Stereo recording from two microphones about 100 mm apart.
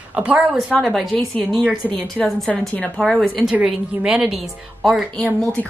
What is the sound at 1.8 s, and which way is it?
Speech, 20° left (ahead or behind).